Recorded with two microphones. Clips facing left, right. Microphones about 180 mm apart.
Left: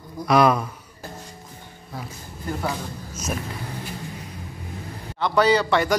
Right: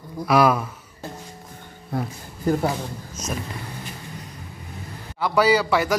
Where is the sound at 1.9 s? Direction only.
60° right (ahead or behind).